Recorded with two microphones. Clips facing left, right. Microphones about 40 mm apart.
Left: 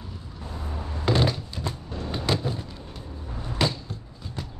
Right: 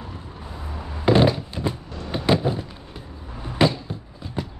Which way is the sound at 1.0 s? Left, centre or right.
Centre.